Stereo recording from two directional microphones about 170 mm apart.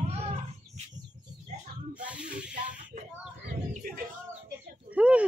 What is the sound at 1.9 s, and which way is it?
Snake, 5° right (ahead or behind).